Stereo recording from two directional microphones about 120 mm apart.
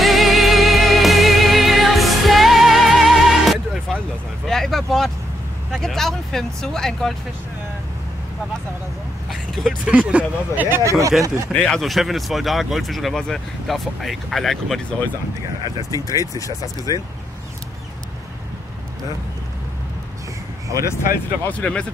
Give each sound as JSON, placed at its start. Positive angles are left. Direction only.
{"t": 0.0, "sound": "music", "side_deg": 0}
{"t": 4.5, "sound": "vehicle", "side_deg": 5}
{"t": 5.7, "sound": "speech", "side_deg": 5}
{"t": 9.3, "sound": "speech", "side_deg": 0}
{"t": 9.9, "sound": "speech", "side_deg": -10}
{"t": 10.8, "sound": "speech", "side_deg": -25}
{"t": 11.5, "sound": "speech", "side_deg": 5}
{"t": 16.1, "sound": "speech", "side_deg": 30}
{"t": 21.5, "sound": "speech", "side_deg": 10}